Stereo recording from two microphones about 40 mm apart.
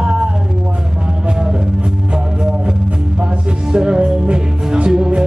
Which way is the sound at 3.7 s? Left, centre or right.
Right.